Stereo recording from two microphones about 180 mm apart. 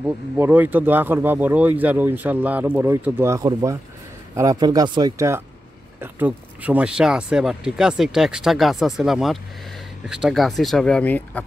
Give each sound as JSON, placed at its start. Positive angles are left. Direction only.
{"t": 0.0, "sound": "speech", "side_deg": -10}